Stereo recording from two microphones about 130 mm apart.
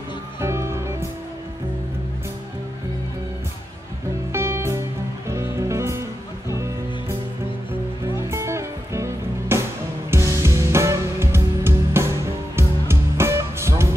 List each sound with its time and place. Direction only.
0.4 s music: 20° right (ahead or behind)
4.3 s music: 20° right (ahead or behind)
8.3 s music: 20° right (ahead or behind)